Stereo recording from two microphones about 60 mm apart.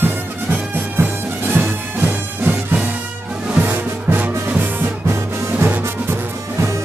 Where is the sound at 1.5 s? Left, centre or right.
Right.